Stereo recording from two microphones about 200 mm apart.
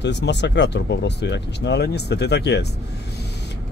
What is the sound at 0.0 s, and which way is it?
Speech, 60° left (ahead or behind).